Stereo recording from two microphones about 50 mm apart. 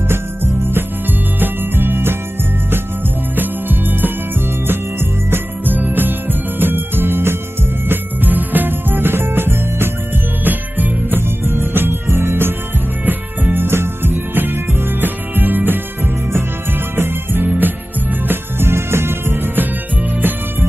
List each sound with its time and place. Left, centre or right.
1.4 s music: right
3.3 s music: right
5.3 s jingle bell: right
7.9 s music: right
10.4 s music: right
13.0 s music: right
13.7 s music: right
16.3 s music: right
18.3 s music: right